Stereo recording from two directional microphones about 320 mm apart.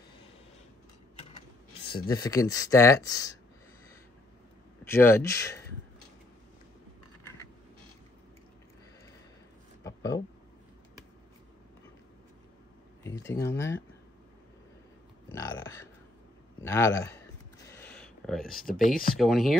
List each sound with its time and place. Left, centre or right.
2.0 s speech: centre
4.8 s speech: centre
9.8 s a sound: centre
13.0 s speech: centre
15.3 s a sound: centre
16.6 s speech: centre
17.6 s a sound: centre
18.6 s speech: left
19.1 s speech: centre